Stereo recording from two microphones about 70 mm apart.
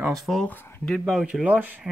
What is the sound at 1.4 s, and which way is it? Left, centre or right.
Speech, right.